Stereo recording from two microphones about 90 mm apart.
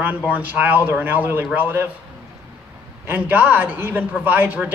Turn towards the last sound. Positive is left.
turn(degrees=-20)  # may be behind; listen again after turning